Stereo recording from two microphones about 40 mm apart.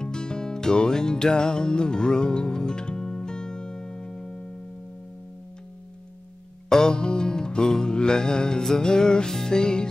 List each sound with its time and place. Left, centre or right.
0.0 s music: centre
6.7 s music: centre